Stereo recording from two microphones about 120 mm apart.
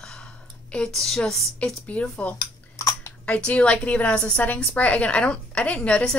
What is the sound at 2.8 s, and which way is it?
Chewing, 25° left (ahead or behind).